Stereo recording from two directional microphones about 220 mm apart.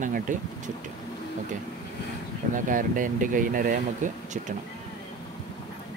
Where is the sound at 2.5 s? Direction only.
35° right (ahead or behind).